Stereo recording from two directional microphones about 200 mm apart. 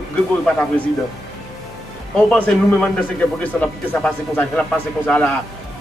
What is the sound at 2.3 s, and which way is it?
Speech, 5° left (ahead or behind).